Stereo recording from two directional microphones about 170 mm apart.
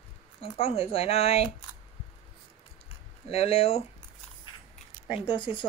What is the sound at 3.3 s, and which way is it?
Speech, 35° left (ahead or behind).